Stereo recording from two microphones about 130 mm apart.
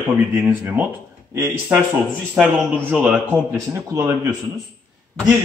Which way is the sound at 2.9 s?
10° right (ahead or behind).